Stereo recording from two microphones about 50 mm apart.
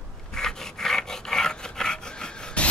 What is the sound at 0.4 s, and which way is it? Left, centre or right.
Rub, centre.